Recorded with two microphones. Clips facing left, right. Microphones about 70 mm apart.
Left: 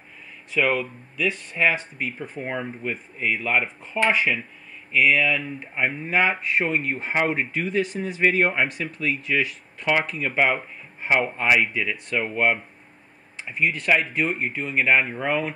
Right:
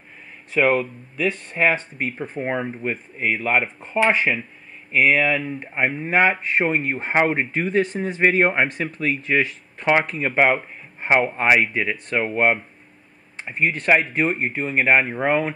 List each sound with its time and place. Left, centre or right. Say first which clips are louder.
0.5 s speech: right 4 dB; right